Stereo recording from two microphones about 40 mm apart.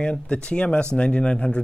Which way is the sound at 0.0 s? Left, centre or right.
Left.